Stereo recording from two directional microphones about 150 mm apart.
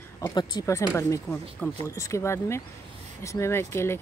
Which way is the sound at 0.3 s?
25° left (ahead or behind).